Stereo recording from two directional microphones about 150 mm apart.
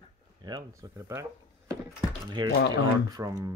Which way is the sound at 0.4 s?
25° right (ahead or behind).